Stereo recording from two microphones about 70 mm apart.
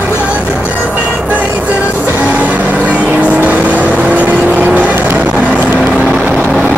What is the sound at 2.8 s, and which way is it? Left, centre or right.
Vehicle, centre.